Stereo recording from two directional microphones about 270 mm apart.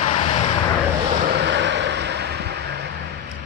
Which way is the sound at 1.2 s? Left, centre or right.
Right.